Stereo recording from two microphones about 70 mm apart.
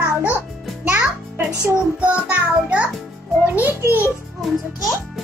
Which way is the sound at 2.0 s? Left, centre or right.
Centre.